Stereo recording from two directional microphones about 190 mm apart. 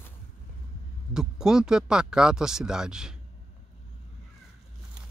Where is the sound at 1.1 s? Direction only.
5° right (ahead or behind).